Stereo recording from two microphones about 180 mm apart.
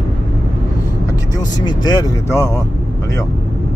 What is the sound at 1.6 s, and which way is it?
Vehicle, 20° left (ahead or behind).